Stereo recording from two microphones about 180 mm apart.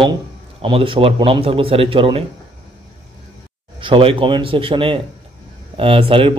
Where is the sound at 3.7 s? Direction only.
30° right (ahead or behind).